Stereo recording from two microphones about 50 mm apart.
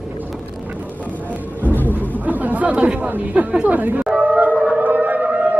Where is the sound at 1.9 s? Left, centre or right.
Right.